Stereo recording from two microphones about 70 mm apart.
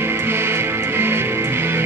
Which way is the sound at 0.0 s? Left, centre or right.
Right.